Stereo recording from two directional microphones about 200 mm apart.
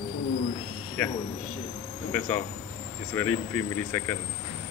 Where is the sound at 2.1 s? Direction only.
5° left (ahead or behind).